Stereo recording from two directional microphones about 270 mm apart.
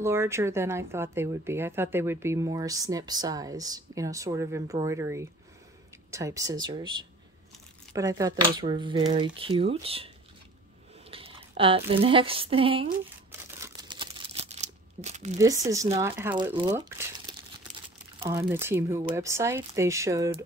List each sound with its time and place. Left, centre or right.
0.0 s speech: centre
13.3 s a sound: centre
14.4 s crumpling: right
15.3 s speech: centre